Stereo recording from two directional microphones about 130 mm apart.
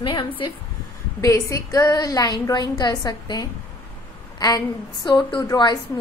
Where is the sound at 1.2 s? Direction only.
25° left (ahead or behind).